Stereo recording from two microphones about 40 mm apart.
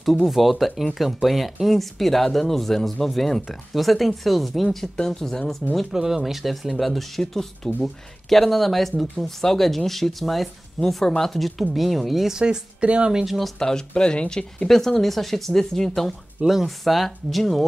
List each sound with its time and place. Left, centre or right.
0.0 s speech: centre
4.9 s speech: centre
5.9 s speech: centre
12.4 s speech: right
13.1 s speech: centre
13.6 s speech: centre
14.7 s speech: centre